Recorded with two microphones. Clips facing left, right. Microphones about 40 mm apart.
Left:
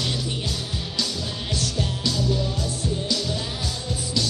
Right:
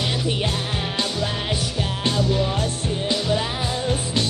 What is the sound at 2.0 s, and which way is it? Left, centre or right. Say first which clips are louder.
Music: right 5 dB; right.